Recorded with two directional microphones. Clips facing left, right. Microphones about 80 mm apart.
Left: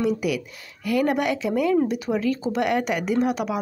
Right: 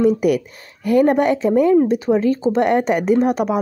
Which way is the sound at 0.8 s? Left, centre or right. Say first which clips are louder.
Right 7 dB; right.